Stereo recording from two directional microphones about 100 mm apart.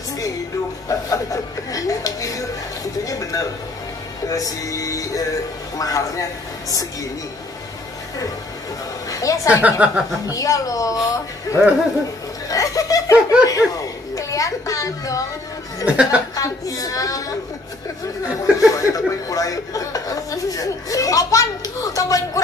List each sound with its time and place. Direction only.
0.8 s speech: 35° left (ahead or behind)
9.1 s speech: 35° left (ahead or behind)
9.5 s speech: 15° right (ahead or behind)
10.2 s speech: 35° left (ahead or behind)
11.6 s speech: 10° right (ahead or behind)
12.4 s chuckle: 35° left (ahead or behind)
13.5 s a sound: 35° left (ahead or behind)
15.8 s speech: 15° right (ahead or behind)
16.3 s speech: 35° left (ahead or behind)
18.7 s speech: 35° left (ahead or behind)